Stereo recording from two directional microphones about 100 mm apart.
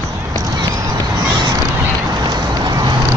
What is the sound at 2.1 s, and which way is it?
Vehicle, 40° right (ahead or behind).